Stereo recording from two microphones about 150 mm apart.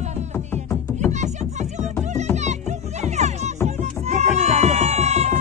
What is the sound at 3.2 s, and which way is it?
Music, 50° right (ahead or behind).